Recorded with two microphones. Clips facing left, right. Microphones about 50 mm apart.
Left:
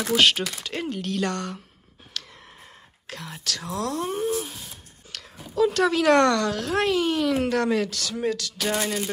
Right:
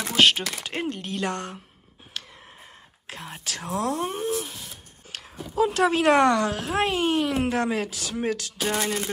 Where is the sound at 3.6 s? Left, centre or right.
Right.